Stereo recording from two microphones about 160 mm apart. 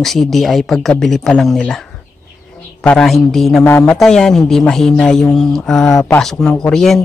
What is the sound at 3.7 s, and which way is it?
Speech, 15° left (ahead or behind).